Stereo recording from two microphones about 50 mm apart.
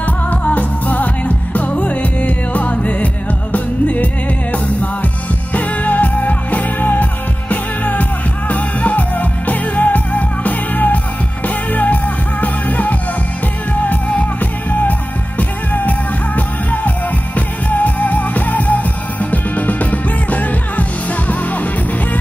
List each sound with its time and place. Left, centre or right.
0.0 s music: left